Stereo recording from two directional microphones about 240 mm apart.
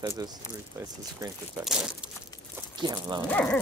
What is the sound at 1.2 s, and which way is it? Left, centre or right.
Speech, centre.